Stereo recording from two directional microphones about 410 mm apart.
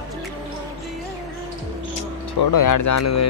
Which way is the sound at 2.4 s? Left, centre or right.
Left.